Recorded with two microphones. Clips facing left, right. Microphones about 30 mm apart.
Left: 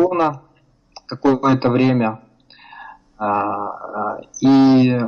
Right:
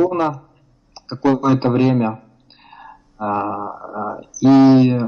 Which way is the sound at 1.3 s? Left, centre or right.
Left.